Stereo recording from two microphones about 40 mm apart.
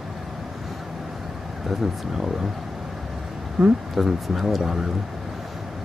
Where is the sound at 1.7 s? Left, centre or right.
Centre.